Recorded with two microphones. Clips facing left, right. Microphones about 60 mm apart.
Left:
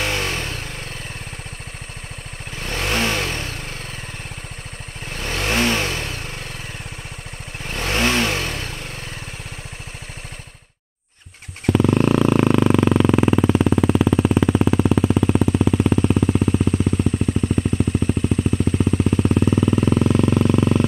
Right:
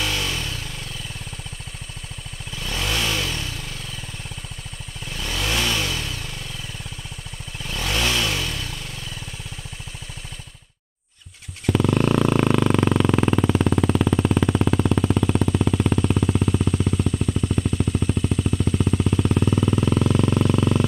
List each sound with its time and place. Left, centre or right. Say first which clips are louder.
0.0 s motorcycle: left 3 dB; left
2.5 s vehicle: left 3 dB; left
5.0 s vehicle: left 3 dB; left
7.6 s vehicle: left 4 dB; left
11.7 s a sound: left 3 dB; centre
17.4 s vehicle: left 3 dB; centre
19.3 s a sound: left 3 dB; centre